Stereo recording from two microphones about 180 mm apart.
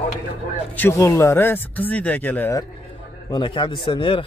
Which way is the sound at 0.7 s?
15° left (ahead or behind).